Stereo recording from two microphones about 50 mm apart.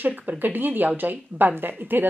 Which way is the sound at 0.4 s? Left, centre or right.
Right.